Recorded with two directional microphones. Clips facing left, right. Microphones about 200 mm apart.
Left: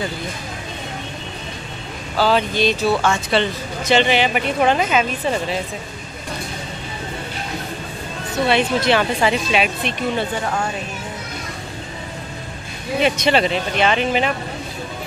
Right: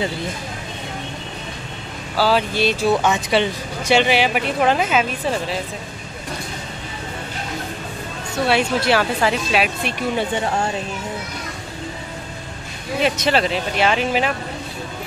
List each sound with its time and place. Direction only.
2.1 s speech: 5° right (ahead or behind)
8.5 s speech: 5° right (ahead or behind)
10.3 s speech: 25° right (ahead or behind)
13.0 s speech: centre (ahead or behind)